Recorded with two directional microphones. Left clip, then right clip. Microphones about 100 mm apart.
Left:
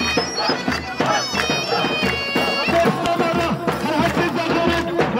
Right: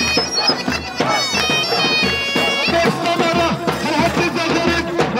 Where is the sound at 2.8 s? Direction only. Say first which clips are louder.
Right 2 dB; 30° right (ahead or behind).